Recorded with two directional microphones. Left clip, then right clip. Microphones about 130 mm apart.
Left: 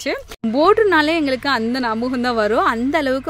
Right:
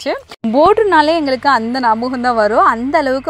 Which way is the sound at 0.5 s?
10° right (ahead or behind).